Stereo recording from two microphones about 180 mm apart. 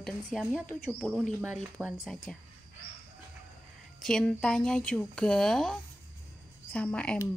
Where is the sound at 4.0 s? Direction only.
5° left (ahead or behind).